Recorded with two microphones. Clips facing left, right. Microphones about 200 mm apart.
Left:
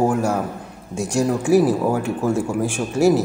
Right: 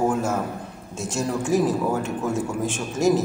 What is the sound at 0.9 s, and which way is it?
A man's voice, 15° left (ahead or behind).